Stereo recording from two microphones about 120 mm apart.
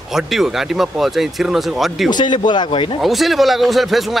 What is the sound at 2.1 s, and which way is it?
Speech, 40° left (ahead or behind).